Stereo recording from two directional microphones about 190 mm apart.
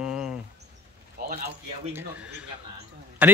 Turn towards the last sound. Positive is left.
turn(degrees=-10)  # may be behind; listen again after turning